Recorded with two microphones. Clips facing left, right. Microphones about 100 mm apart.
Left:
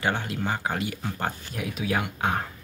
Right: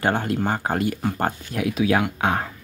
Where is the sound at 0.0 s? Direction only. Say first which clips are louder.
Right 5 dB; 45° right (ahead or behind).